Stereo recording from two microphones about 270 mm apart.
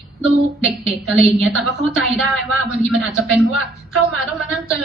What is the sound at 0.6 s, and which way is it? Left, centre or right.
A woman's voice, centre.